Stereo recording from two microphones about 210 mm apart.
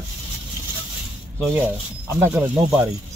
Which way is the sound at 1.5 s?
10° right (ahead or behind).